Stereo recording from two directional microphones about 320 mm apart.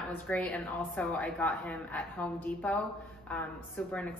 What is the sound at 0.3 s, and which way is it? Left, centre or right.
A woman's voice, centre.